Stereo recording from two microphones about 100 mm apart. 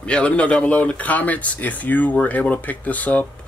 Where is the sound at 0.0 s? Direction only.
10° left (ahead or behind).